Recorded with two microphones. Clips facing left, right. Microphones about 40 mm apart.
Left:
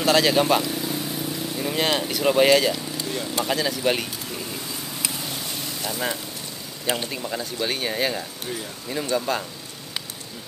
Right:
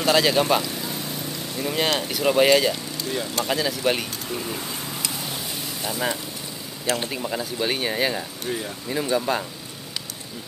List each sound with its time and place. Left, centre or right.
0.0 s speech: centre
5.8 s speech: centre